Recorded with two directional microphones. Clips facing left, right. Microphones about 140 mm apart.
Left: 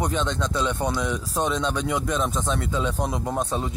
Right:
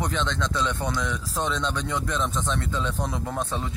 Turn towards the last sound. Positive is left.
turn(degrees=20)  # may be behind; listen again after turning